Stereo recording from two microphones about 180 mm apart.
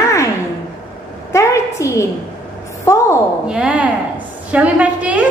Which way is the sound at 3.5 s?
5° right (ahead or behind).